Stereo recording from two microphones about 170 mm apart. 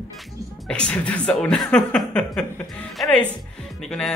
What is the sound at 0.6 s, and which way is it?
A woman's voice, 5° left (ahead or behind).